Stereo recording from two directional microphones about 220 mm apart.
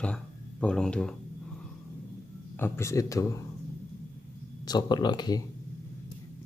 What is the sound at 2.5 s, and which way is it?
Speech, 10° left (ahead or behind).